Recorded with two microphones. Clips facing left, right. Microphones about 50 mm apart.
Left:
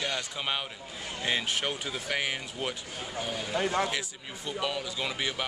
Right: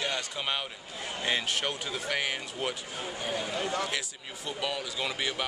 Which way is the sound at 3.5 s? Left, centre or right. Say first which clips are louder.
Left 7 dB; left.